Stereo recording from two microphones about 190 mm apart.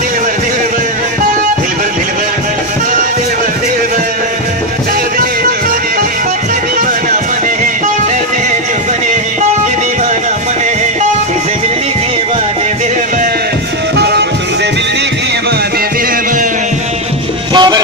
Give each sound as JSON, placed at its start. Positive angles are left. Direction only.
{"t": 17.6, "sound": "music", "side_deg": -20}